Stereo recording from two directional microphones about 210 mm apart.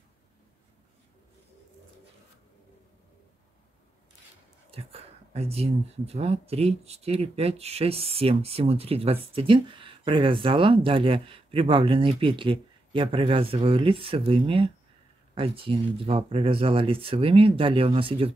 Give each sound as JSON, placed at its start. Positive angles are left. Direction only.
{"t": 4.7, "sound": "speech", "side_deg": -30}